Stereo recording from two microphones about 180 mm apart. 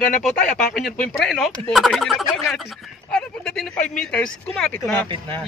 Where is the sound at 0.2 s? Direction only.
5° left (ahead or behind).